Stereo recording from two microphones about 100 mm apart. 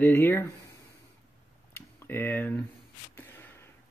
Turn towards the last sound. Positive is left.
turn(degrees=20)  # may be behind; listen again after turning